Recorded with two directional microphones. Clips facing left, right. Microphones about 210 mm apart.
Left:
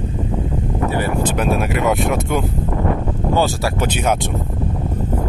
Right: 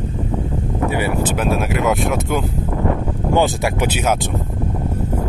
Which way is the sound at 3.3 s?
20° right (ahead or behind).